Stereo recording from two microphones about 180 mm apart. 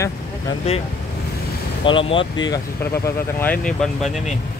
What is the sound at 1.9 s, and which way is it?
Speech, 30° left (ahead or behind).